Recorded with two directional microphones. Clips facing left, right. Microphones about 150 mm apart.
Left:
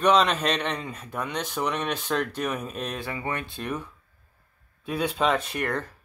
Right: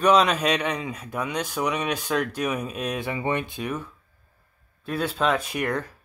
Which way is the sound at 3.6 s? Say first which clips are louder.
Right 1 dB; 5° right (ahead or behind).